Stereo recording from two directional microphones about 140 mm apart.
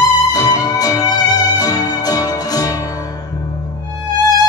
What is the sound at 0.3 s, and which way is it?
Music, 25° left (ahead or behind).